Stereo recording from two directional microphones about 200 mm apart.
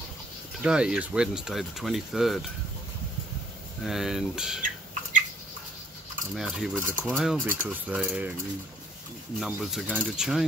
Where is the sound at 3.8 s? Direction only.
Centre (ahead or behind).